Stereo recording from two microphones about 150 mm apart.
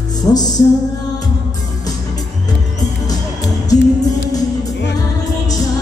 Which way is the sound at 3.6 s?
25° left (ahead or behind).